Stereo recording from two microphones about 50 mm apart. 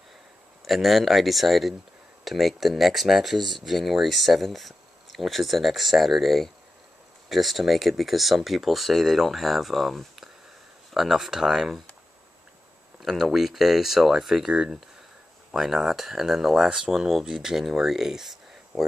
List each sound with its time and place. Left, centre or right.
0.7 s speech: centre
13.0 s speech: centre
14.5 s speech: centre
15.5 s speech: centre